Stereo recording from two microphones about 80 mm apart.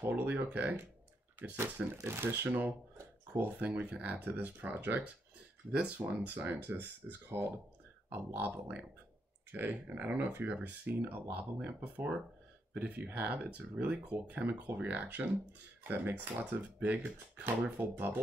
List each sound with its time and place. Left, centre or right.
0.0 s speech: right